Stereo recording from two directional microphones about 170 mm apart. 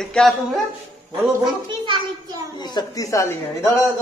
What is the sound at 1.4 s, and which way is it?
Speech, 25° right (ahead or behind).